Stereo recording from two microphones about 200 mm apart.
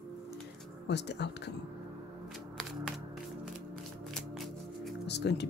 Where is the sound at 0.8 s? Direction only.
60° left (ahead or behind).